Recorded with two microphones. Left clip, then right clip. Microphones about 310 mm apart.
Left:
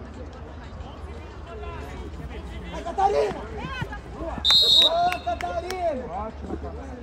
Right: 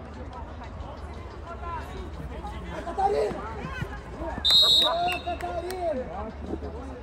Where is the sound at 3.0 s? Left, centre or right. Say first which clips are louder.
Left 3 dB; centre.